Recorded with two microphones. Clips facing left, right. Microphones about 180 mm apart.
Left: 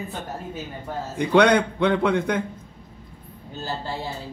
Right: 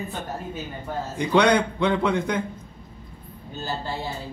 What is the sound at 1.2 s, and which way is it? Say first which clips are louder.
A man's voice: left 2 dB; 60° left (ahead or behind).